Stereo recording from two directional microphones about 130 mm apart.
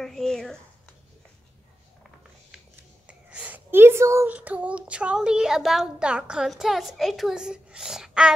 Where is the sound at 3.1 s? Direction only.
10° right (ahead or behind).